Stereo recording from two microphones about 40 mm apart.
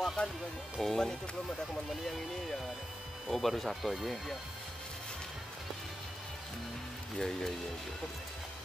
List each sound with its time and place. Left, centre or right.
0.2 s speech: left
0.7 s speech: centre
7.2 s speech: centre